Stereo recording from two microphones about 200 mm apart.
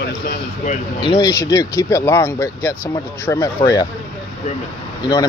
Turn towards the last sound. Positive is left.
turn(degrees=20)  # may be behind; listen again after turning